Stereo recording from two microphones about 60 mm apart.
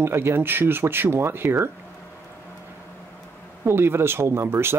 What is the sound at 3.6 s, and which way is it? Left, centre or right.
Speech, right.